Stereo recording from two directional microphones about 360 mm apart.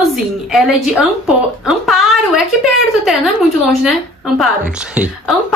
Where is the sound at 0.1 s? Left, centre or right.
Centre.